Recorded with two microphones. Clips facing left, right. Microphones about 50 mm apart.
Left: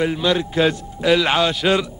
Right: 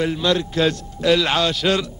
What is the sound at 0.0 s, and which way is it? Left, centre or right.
A man's voice, centre.